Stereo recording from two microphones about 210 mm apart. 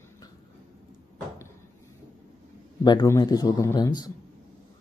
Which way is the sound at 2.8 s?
20° left (ahead or behind).